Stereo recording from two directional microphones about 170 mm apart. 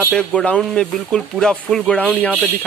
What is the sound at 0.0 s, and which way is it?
Speech, 5° left (ahead or behind).